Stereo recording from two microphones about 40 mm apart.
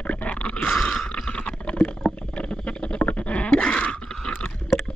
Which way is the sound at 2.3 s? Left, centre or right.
Left.